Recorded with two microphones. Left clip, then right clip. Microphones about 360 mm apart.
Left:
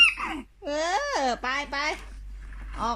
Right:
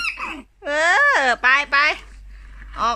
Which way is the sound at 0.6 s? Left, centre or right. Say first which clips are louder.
Right 11 dB; right.